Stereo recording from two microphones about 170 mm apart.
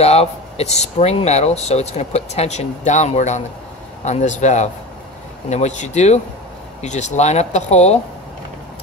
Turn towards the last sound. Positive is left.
turn(degrees=40)  # may be behind; listen again after turning